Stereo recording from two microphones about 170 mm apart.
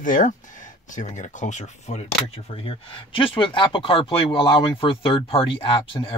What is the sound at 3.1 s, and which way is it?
Speech, 30° left (ahead or behind).